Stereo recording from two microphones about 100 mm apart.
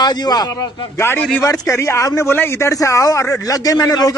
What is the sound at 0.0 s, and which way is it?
Speech, 45° left (ahead or behind).